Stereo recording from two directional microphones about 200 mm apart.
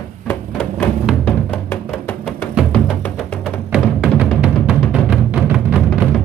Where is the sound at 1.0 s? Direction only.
5° left (ahead or behind).